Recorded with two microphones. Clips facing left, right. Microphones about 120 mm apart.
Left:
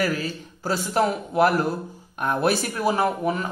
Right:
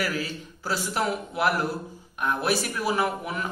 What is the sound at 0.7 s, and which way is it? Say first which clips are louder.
Speech: left 5 dB; 40° left (ahead or behind).